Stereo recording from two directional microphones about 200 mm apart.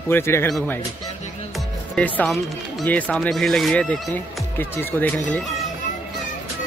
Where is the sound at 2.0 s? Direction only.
5° left (ahead or behind).